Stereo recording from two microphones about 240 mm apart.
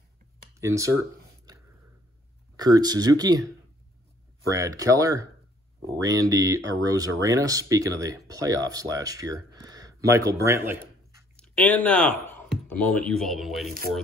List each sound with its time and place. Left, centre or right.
0.6 s speech: centre
2.5 s speech: centre
4.5 s speech: centre
11.3 s speech: centre